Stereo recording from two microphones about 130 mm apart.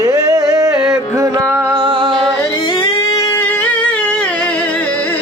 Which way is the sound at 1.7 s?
40° right (ahead or behind).